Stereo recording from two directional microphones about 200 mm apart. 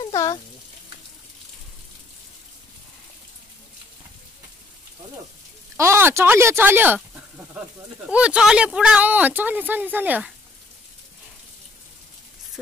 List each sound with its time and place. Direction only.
0.0 s speech: 20° left (ahead or behind)
5.8 s speech: 15° right (ahead or behind)
8.1 s speech: 5° right (ahead or behind)